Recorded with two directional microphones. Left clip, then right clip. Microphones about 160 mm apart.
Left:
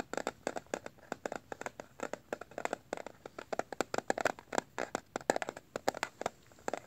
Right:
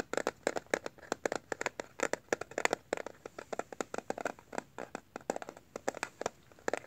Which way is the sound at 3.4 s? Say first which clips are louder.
Left 3 dB; 15° left (ahead or behind).